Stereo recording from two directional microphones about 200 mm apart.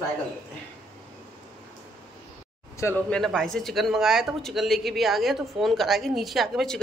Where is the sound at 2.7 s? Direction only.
10° left (ahead or behind).